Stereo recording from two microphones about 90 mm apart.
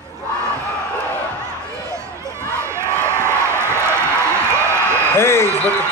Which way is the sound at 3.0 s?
30° right (ahead or behind).